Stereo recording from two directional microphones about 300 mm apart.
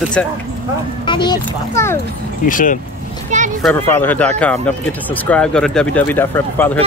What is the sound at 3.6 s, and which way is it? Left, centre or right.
Speech, centre.